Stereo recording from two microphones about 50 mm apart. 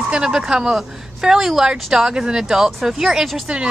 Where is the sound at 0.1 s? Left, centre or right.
Centre.